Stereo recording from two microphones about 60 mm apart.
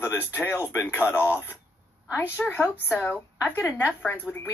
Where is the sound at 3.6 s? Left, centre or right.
Left.